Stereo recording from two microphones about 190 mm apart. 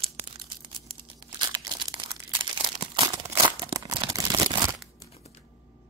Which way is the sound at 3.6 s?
20° right (ahead or behind).